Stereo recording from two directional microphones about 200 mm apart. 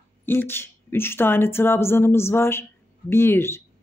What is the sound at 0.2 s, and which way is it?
Speech, 10° left (ahead or behind).